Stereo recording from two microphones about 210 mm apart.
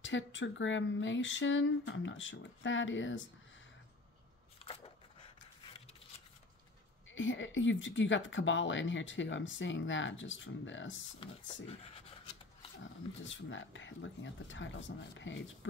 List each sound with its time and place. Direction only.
0.0 s speech: 65° left (ahead or behind)
5.7 s a sound: 25° left (ahead or behind)
7.1 s speech: 65° left (ahead or behind)
11.1 s speech: 25° left (ahead or behind)
13.2 s speech: 65° left (ahead or behind)